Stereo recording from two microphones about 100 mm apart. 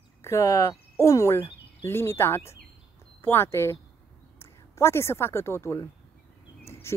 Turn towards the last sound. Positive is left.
turn(degrees=25)  # may be behind; listen again after turning